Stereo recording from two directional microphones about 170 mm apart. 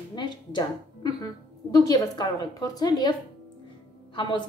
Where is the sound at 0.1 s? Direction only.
25° left (ahead or behind).